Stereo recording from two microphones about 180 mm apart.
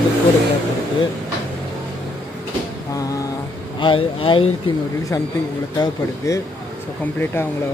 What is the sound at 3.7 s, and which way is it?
Speech, 30° left (ahead or behind).